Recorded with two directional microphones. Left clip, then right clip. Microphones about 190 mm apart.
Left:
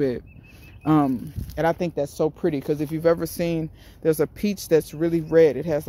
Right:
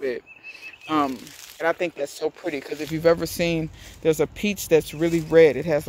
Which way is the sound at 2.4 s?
10° left (ahead or behind).